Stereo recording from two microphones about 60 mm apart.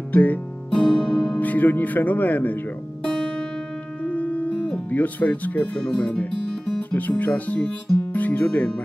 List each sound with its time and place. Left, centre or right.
0.1 s music: left
0.7 s music: centre
1.4 s speech: left
3.1 s music: centre
4.1 s music: left
4.9 s speech: left
6.9 s speech: left